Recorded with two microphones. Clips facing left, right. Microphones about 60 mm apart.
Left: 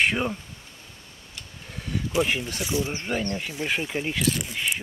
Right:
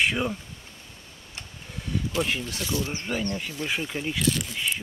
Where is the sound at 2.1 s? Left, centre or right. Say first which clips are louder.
Left 5 dB; centre.